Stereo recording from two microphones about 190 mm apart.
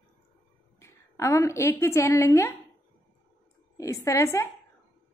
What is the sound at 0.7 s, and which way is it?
A woman's voice, 15° left (ahead or behind).